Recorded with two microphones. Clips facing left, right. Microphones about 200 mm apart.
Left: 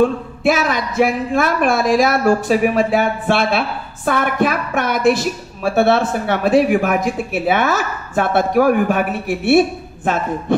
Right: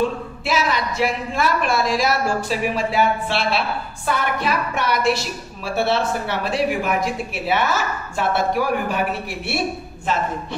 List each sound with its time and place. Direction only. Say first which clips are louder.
0.0 s a man's voice: left 8 dB; 55° left (ahead or behind)